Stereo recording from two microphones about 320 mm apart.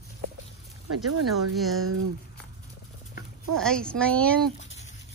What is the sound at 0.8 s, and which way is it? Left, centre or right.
Speech, right.